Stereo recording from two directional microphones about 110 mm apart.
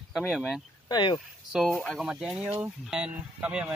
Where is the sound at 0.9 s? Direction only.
45° left (ahead or behind).